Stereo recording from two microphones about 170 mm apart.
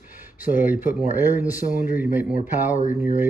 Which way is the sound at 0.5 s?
10° right (ahead or behind).